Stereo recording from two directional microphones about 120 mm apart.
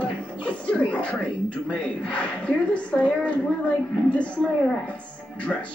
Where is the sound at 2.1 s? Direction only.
10° left (ahead or behind).